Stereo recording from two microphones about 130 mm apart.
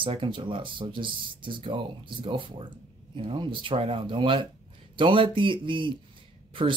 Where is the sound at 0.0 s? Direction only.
40° right (ahead or behind).